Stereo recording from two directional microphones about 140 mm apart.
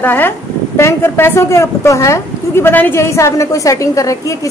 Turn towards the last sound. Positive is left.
turn(degrees=25)  # may be behind; listen again after turning